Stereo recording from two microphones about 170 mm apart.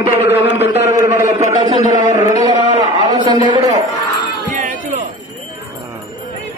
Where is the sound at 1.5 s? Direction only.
45° right (ahead or behind).